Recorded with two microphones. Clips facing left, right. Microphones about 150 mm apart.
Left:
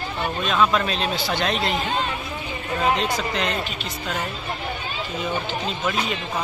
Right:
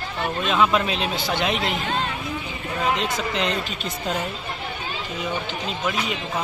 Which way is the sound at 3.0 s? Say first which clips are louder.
Even; 25° right (ahead or behind).